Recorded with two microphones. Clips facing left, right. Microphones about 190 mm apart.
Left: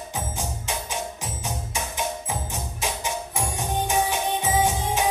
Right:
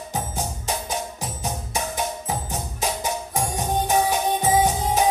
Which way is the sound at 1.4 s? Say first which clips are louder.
Right 4 dB; 40° right (ahead or behind).